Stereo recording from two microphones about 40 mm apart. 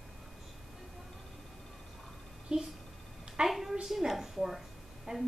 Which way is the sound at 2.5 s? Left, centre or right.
Centre.